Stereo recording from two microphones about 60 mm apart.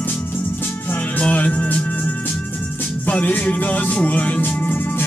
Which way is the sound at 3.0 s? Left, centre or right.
Left.